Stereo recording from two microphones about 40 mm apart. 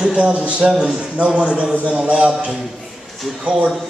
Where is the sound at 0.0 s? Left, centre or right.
Right.